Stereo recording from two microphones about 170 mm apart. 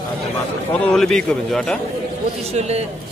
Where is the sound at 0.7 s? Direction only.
5° left (ahead or behind).